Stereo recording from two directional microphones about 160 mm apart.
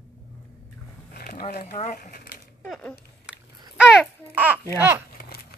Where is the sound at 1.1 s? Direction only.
70° left (ahead or behind).